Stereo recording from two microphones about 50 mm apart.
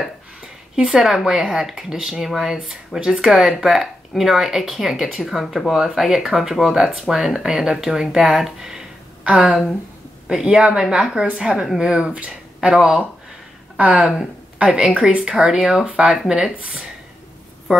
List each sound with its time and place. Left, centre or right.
1.0 s speech: centre
13.7 s speech: right